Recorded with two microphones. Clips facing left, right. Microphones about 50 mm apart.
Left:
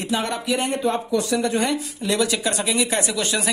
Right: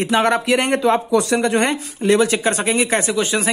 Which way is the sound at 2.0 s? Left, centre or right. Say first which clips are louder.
Right 8 dB; right.